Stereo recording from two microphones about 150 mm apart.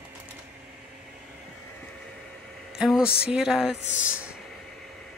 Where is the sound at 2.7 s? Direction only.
5° right (ahead or behind).